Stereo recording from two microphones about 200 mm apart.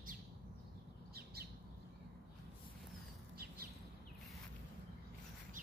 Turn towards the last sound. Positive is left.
turn(degrees=-50)  # may be behind; listen again after turning